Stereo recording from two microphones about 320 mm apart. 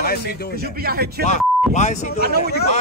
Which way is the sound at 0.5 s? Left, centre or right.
Right.